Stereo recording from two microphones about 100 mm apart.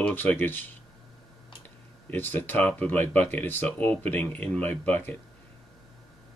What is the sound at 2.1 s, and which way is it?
Speech, 20° left (ahead or behind).